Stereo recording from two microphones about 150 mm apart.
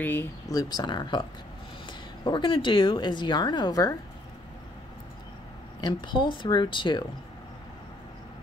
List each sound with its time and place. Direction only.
0.0 s speech: 15° left (ahead or behind)
5.8 s speech: 30° left (ahead or behind)